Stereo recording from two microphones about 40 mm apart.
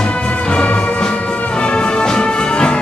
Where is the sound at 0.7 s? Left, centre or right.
Left.